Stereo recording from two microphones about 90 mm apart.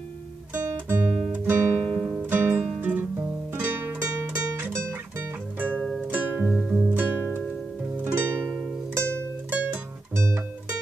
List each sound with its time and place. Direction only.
0.5 s guitar: 20° right (ahead or behind)
1.9 s guitar: 5° right (ahead or behind)
2.1 s music: 25° right (ahead or behind)
6.5 s music: 5° right (ahead or behind)
6.9 s music: 20° right (ahead or behind)
9.5 s music: 20° right (ahead or behind)